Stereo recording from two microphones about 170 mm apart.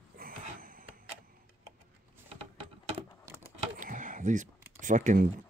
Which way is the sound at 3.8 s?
50° right (ahead or behind).